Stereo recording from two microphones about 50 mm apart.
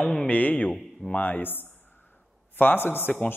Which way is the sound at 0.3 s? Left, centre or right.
Left.